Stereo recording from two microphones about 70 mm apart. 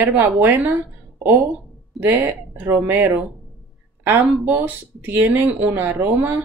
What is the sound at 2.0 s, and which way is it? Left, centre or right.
Speech, right.